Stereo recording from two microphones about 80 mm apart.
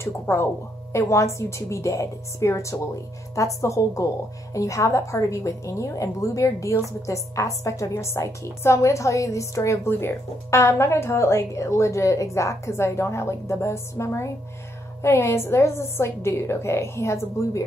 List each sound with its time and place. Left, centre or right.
0.0 s a woman's voice: left